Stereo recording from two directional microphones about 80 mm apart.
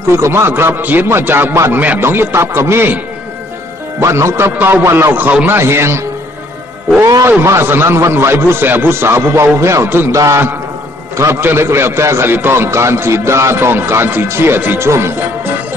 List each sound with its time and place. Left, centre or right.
0.2 s speech: right
4.0 s a man's voice: right
4.8 s a man's voice: right
5.1 s speech: right
5.6 s a man's voice: right
7.2 s a man's voice: right
10.1 s a man's voice: right
11.1 s a man's voice: right